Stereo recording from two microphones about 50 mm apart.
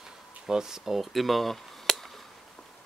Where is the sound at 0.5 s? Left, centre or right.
Centre.